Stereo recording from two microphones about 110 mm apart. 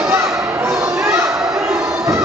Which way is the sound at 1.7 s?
25° right (ahead or behind).